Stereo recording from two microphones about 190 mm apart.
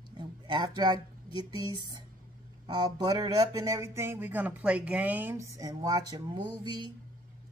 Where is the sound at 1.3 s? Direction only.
20° right (ahead or behind).